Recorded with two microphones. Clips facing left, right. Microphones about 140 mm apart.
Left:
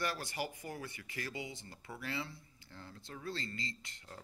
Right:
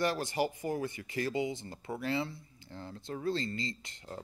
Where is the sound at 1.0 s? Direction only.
30° right (ahead or behind).